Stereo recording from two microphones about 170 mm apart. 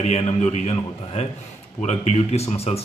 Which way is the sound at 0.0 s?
40° left (ahead or behind).